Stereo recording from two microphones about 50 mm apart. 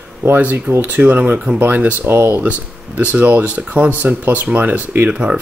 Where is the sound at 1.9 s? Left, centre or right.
Right.